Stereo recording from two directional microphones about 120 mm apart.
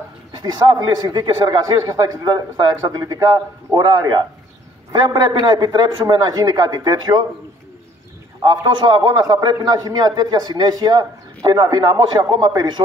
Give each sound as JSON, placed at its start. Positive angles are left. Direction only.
{"t": 0.4, "sound": "a man's voice", "side_deg": -35}
{"t": 8.5, "sound": "a man's voice", "side_deg": -40}